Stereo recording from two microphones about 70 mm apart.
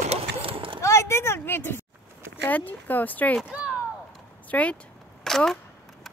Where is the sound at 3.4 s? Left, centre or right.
Centre.